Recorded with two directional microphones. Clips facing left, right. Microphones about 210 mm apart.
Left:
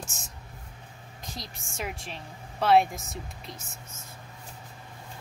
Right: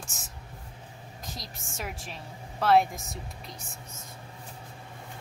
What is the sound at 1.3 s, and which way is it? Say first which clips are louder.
Speech: left 3 dB; centre (ahead or behind).